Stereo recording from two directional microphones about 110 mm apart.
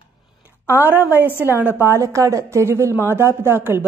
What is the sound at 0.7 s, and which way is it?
A woman's voice, 15° right (ahead or behind).